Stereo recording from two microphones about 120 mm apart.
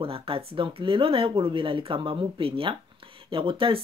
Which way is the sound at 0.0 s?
50° right (ahead or behind).